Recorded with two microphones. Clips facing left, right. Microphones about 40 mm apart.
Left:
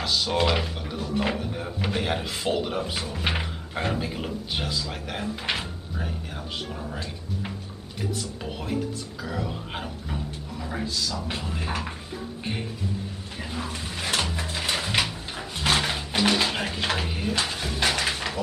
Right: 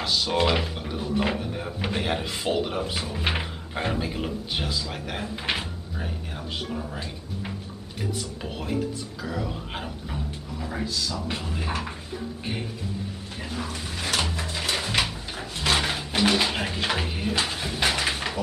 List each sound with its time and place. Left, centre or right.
0.0 s speech: centre
13.4 s speech: centre
14.3 s a sound: centre